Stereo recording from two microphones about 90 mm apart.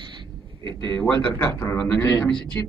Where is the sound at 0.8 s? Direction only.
25° left (ahead or behind).